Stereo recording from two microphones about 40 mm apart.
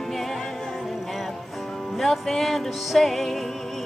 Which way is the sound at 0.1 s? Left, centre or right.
Centre.